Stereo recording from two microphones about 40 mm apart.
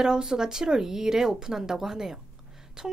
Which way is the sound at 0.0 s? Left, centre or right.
Centre.